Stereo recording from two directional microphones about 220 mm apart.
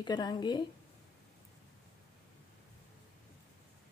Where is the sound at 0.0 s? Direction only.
20° left (ahead or behind).